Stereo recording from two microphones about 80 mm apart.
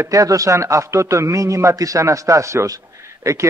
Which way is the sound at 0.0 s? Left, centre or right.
Right.